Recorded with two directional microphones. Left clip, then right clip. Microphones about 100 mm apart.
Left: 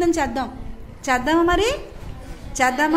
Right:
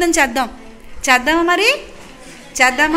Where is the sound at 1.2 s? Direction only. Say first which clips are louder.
Right 5 dB; 30° left (ahead or behind).